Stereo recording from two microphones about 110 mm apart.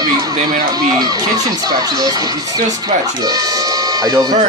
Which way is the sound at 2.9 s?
90° right.